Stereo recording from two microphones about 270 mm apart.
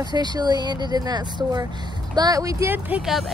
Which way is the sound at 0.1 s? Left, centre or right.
Centre.